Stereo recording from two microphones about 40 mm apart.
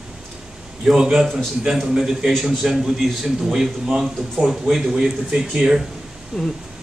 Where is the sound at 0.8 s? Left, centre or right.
Centre.